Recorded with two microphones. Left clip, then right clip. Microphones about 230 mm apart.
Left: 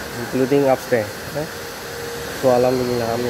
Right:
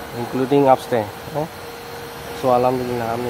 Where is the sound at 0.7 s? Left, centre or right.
Centre.